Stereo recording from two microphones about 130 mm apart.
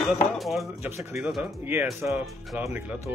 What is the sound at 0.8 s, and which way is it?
Speech, 20° right (ahead or behind).